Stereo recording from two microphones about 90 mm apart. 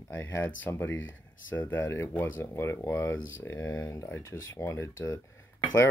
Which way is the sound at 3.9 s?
30° left (ahead or behind).